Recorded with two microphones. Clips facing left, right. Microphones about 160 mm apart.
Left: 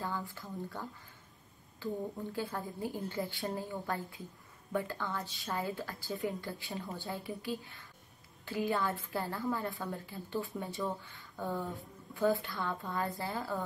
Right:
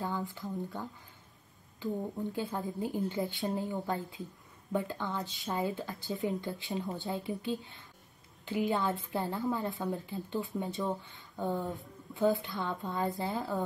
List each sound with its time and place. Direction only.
0.0 s speech: 20° right (ahead or behind)